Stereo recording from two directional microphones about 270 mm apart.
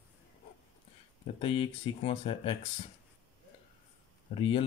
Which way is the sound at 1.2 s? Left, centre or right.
Left.